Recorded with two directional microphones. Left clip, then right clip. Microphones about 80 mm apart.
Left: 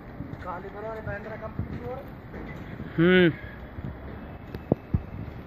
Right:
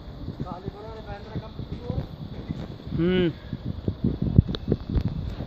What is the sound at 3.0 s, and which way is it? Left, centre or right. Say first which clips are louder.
Speech: left 4 dB; centre.